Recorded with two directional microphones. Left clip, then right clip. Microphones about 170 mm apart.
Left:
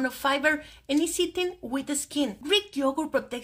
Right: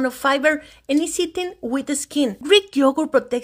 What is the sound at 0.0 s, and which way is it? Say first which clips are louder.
Speech: right 7 dB; 45° right (ahead or behind).